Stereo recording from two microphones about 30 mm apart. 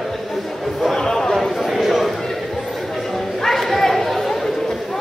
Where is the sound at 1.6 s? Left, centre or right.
Centre.